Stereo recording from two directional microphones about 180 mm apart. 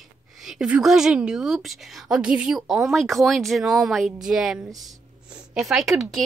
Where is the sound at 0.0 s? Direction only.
Centre (ahead or behind).